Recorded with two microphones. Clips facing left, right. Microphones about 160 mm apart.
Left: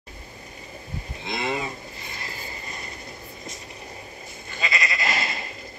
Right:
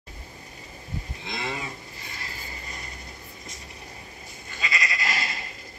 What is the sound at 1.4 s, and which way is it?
Speech, 15° left (ahead or behind).